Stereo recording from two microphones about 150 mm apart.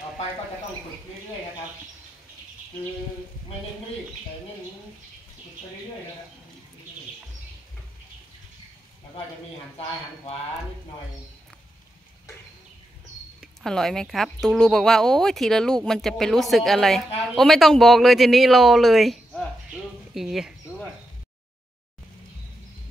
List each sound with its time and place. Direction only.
13.4 s speech: centre (ahead or behind)